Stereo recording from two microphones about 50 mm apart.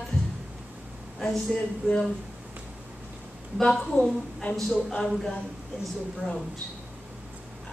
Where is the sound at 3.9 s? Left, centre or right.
Left.